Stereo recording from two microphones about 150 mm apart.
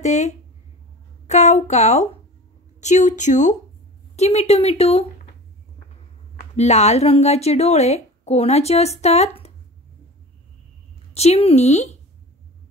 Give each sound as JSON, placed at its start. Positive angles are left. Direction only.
{"t": 0.0, "sound": "a woman's voice", "side_deg": 50}
{"t": 6.5, "sound": "a woman's voice", "side_deg": 45}
{"t": 11.1, "sound": "a woman's voice", "side_deg": 45}